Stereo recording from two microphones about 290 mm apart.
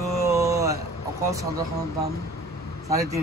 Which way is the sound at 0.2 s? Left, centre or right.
Centre.